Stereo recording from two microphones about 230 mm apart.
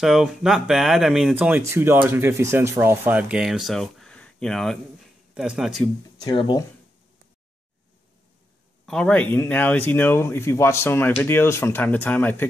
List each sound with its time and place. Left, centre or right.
0.0 s speech: centre
6.1 s speech: centre
8.8 s speech: centre